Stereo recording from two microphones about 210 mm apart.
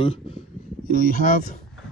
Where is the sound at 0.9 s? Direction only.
40° left (ahead or behind).